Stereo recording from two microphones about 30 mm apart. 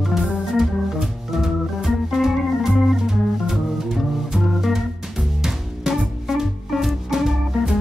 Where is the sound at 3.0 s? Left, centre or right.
Centre.